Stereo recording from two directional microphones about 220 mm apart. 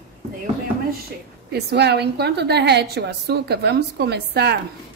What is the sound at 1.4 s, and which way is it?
A woman's voice, 50° right (ahead or behind).